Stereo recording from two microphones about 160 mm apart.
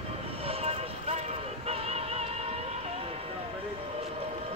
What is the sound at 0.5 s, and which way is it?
Vehicle, 40° right (ahead or behind).